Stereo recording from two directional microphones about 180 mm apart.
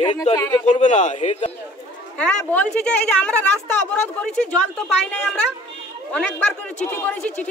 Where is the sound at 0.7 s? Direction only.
40° left (ahead or behind).